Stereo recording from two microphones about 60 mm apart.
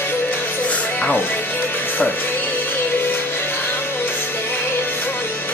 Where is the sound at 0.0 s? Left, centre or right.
Left.